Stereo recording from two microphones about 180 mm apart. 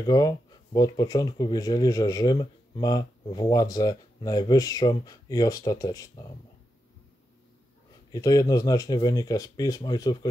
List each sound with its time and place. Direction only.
0.0 s speech: 20° left (ahead or behind)
8.1 s speech: 20° left (ahead or behind)